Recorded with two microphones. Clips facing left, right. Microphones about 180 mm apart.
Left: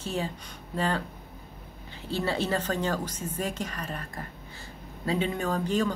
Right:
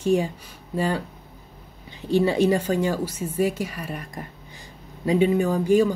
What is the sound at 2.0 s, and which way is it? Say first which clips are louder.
Speech: right 10 dB; 15° right (ahead or behind).